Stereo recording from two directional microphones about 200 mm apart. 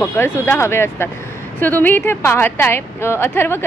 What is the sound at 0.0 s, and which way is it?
Speech, 15° left (ahead or behind).